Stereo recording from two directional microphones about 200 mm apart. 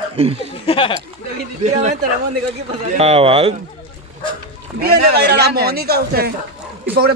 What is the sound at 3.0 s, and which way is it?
Speech, 30° right (ahead or behind).